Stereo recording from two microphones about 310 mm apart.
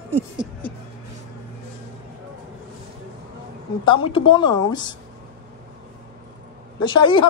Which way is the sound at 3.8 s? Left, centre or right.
Centre.